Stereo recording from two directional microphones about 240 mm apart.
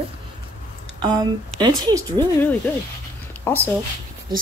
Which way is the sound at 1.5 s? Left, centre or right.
Centre.